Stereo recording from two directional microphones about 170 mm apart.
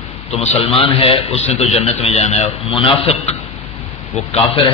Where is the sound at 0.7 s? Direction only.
35° left (ahead or behind).